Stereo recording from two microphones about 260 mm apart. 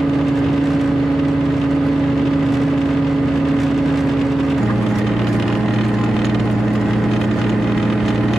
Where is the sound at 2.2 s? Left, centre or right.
Centre.